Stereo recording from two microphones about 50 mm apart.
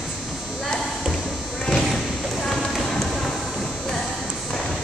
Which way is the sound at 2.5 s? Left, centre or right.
Centre.